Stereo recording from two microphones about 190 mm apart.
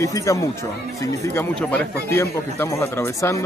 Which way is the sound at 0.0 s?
15° left (ahead or behind).